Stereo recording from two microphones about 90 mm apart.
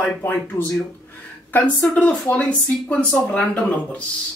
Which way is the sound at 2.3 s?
20° left (ahead or behind).